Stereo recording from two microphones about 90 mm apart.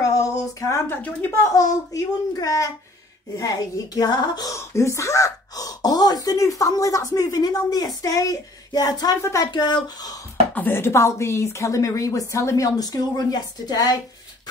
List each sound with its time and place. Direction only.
0.0 s a sound: 40° left (ahead or behind)
1.5 s speech: 40° left (ahead or behind)
4.6 s speech: 35° left (ahead or behind)
9.2 s speech: 35° left (ahead or behind)
9.5 s speech: 50° left (ahead or behind)
10.5 s speech: 25° left (ahead or behind); by 13.9 s 45° left (ahead or behind)